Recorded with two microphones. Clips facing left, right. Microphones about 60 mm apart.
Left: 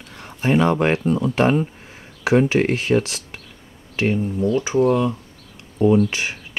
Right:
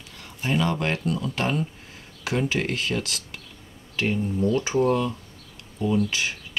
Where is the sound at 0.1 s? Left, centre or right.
Left; by 5.0 s centre.